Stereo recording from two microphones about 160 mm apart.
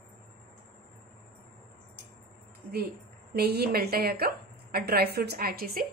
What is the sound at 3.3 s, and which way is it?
A woman's voice, 80° right.